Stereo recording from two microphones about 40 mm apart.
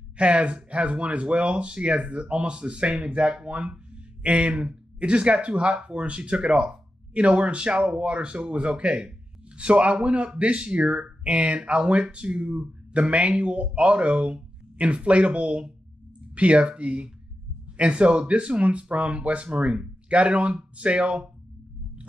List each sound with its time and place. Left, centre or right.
0.2 s speech: right